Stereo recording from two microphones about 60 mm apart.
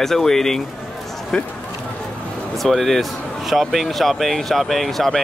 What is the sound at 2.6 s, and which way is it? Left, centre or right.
Speech, centre.